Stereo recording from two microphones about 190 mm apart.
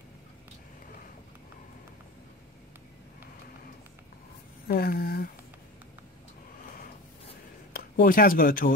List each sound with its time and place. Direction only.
4.6 s speech: 50° left (ahead or behind)
7.7 s speech: 50° left (ahead or behind)